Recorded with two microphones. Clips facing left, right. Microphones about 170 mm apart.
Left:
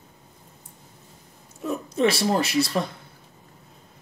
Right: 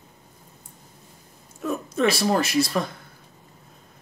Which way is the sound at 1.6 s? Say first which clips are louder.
Even; 25° left (ahead or behind).